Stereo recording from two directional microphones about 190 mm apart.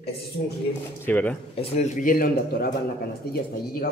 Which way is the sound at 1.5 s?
30° left (ahead or behind).